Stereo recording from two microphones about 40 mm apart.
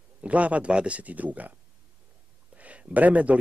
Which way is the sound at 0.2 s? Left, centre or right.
Right.